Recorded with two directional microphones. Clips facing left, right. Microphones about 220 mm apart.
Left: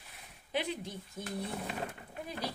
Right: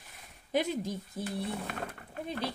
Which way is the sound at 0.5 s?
45° right (ahead or behind).